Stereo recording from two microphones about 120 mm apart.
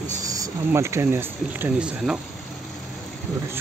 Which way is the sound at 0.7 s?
20° right (ahead or behind).